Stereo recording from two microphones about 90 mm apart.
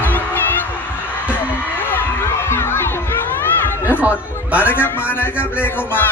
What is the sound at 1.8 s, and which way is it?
Crowd, 25° left (ahead or behind).